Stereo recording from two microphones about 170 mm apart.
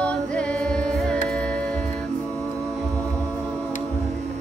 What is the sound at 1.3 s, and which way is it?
Music, 5° left (ahead or behind).